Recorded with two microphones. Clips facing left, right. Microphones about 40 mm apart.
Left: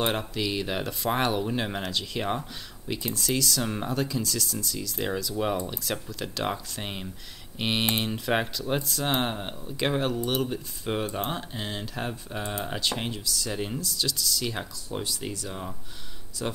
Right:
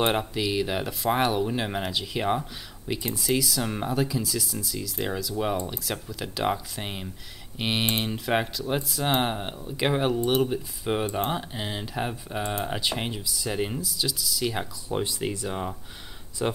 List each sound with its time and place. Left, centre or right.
0.0 s speech: centre; by 16.6 s right